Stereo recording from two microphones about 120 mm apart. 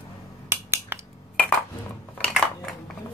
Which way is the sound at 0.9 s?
15° right (ahead or behind).